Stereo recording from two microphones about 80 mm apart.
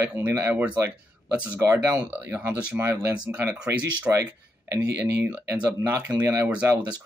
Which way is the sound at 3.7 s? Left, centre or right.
Right.